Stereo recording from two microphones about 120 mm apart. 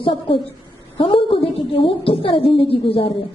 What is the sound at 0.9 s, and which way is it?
A woman's voice, 50° left (ahead or behind).